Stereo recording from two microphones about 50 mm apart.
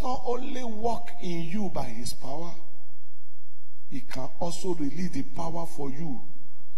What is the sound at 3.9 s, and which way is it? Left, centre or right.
A man's voice, centre.